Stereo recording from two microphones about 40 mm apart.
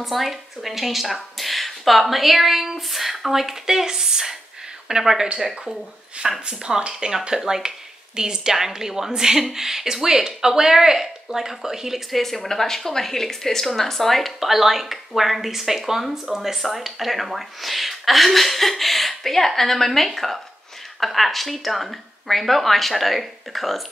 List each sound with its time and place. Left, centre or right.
0.0 s speech: centre
6.4 s speech: right
12.1 s speech: centre